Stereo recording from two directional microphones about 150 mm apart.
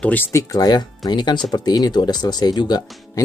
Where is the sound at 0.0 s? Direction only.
15° left (ahead or behind).